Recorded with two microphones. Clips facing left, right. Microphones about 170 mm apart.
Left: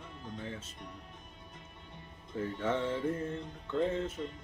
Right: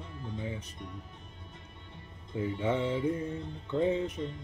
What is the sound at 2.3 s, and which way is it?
Music, 15° right (ahead or behind).